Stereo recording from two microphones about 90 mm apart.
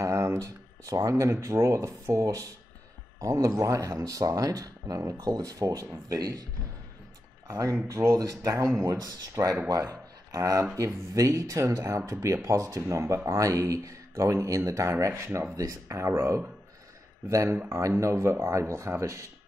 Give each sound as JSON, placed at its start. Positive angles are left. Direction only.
{"t": 0.0, "sound": "a sound", "side_deg": -35}
{"t": 0.4, "sound": "speech", "side_deg": -40}
{"t": 7.9, "sound": "speech", "side_deg": -35}